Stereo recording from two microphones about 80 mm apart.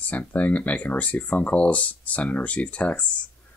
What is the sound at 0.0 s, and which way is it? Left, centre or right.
Speech, centre.